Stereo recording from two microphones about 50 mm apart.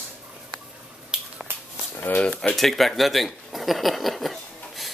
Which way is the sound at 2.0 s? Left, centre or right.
Left.